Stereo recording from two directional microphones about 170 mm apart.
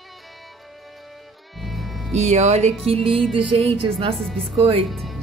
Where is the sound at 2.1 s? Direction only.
40° right (ahead or behind).